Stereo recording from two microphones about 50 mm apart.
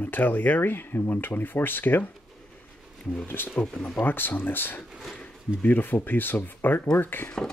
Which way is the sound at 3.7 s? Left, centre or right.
Centre.